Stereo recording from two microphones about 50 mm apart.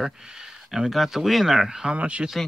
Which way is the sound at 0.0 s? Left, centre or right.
Centre.